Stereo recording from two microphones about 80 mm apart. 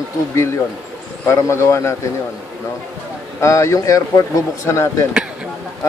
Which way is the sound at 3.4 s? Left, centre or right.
Left.